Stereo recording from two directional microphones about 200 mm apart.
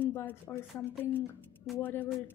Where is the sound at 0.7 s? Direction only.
Centre (ahead or behind).